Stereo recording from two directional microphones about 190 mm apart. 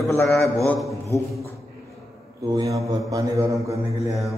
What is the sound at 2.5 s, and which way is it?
Mantra, 20° right (ahead or behind).